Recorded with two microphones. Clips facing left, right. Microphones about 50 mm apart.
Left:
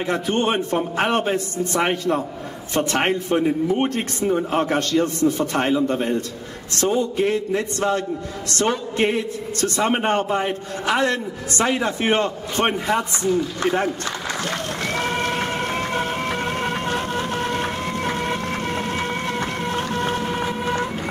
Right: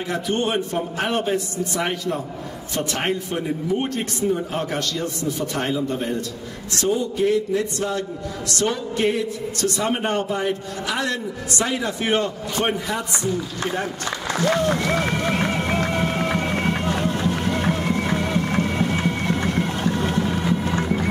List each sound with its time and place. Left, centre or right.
0.0 s a man's voice: left